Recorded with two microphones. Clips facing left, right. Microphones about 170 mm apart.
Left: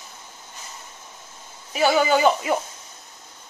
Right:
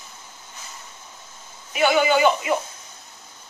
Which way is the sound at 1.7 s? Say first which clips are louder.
Even; 35° left (ahead or behind).